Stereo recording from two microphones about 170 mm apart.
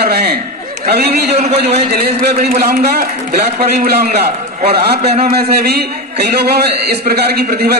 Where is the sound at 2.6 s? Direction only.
65° right (ahead or behind).